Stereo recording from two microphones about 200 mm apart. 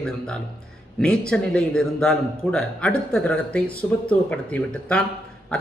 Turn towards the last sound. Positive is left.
turn(degrees=5)  # may be behind; listen again after turning